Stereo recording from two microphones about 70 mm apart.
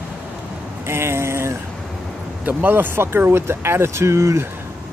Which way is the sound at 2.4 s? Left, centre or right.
Right.